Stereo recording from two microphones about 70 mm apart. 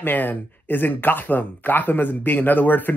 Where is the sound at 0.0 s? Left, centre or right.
Left.